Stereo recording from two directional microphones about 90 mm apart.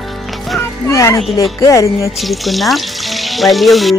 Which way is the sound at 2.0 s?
Centre (ahead or behind).